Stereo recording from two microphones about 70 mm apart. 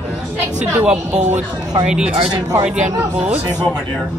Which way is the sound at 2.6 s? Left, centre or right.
Centre.